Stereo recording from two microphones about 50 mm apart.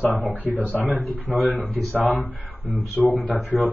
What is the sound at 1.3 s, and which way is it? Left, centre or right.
Speech, centre.